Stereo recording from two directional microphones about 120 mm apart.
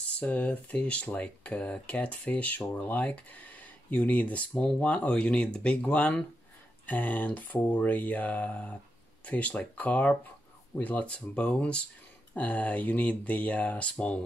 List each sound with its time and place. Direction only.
0.2 s speech: 10° left (ahead or behind)